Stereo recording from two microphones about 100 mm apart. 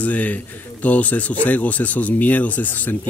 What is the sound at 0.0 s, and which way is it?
A man's voice, 15° left (ahead or behind).